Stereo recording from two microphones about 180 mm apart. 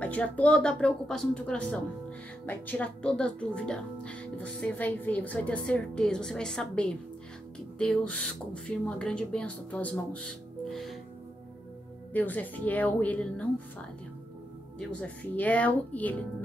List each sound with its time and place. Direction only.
0.0 s a woman's voice: 5° left (ahead or behind)
12.1 s a woman's voice: 10° left (ahead or behind)
14.8 s a woman's voice: 5° left (ahead or behind)